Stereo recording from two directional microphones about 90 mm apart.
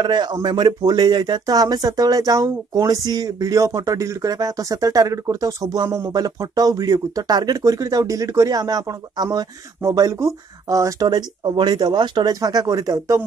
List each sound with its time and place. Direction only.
0.0 s speech: 55° right (ahead or behind); by 11.1 s 35° right (ahead or behind)
11.1 s speech: 55° right (ahead or behind)